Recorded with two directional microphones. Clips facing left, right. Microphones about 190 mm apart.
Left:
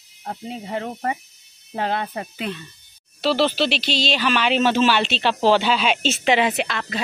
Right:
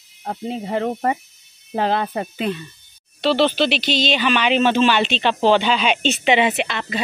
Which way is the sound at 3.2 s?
Centre (ahead or behind).